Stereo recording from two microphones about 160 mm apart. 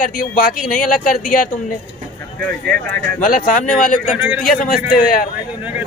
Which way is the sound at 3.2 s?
60° left (ahead or behind).